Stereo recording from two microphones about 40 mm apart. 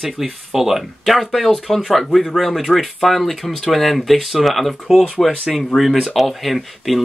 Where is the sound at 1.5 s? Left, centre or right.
Centre.